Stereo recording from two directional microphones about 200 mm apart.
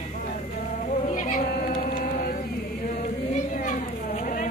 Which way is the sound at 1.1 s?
40° left (ahead or behind).